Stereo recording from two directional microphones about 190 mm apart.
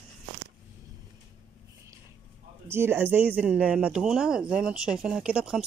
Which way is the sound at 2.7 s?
10° right (ahead or behind).